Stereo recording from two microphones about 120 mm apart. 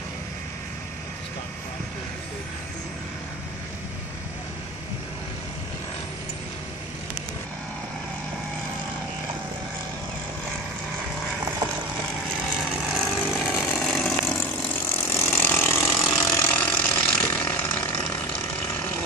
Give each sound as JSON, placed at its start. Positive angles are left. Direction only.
{"t": 12.7, "sound": "vehicle", "side_deg": 0}
{"t": 14.3, "sound": "ratchet", "side_deg": 15}